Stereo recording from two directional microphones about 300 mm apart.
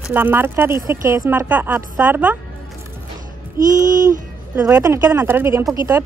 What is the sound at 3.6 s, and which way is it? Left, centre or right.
Speech, right.